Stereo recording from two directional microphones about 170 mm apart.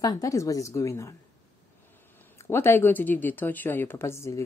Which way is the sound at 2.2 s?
15° left (ahead or behind).